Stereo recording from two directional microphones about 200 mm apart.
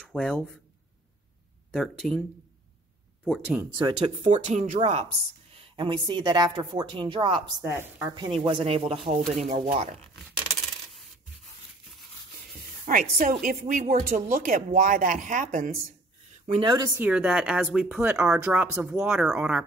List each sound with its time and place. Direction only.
0.0 s speech: 5° left (ahead or behind)
1.7 s speech: centre (ahead or behind)
3.3 s speech: 5° right (ahead or behind)
3.9 s speech: 30° right (ahead or behind)
5.6 s a woman's voice: 25° right (ahead or behind)
12.4 s speech: 45° right (ahead or behind)
16.4 s a woman's voice: 25° right (ahead or behind)
17.0 s speech: 5° right (ahead or behind)